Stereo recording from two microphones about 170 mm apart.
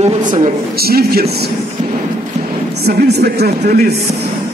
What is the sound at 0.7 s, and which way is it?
Speech, 65° right (ahead or behind).